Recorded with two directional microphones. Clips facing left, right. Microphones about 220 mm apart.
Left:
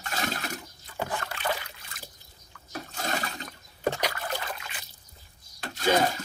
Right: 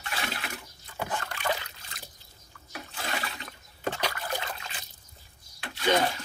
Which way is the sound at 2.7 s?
40° left (ahead or behind).